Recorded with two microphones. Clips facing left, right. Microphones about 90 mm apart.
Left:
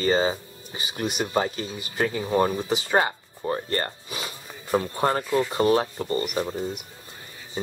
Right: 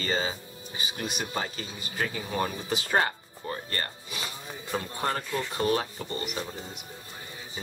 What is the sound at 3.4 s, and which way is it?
Speech, 30° left (ahead or behind).